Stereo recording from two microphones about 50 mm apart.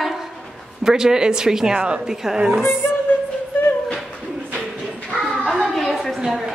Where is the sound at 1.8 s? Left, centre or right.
Right.